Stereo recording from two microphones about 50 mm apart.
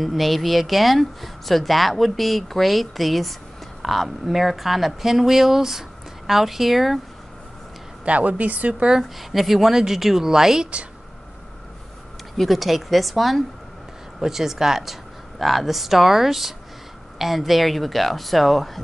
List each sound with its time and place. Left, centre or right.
0.0 s speech: centre
8.0 s speech: right
9.3 s speech: centre
12.4 s speech: centre